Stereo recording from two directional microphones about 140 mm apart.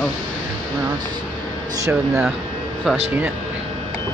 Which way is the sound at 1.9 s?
10° right (ahead or behind).